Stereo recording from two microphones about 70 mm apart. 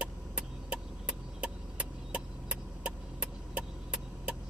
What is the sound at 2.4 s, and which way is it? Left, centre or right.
Vehicle, centre.